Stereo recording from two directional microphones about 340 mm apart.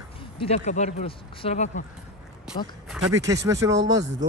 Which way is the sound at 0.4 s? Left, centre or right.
Centre.